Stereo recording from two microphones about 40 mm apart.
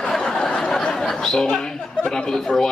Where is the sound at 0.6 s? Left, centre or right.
Centre.